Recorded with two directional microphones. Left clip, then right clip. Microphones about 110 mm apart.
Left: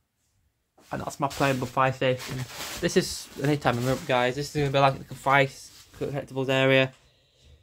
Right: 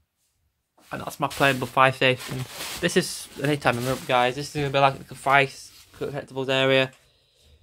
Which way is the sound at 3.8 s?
15° left (ahead or behind).